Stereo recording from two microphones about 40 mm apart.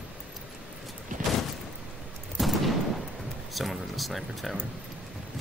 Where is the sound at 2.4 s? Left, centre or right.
Centre.